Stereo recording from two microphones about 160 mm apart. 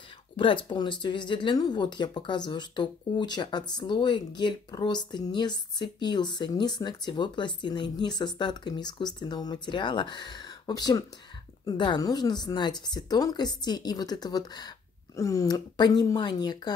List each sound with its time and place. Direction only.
0.4 s speech: 30° left (ahead or behind)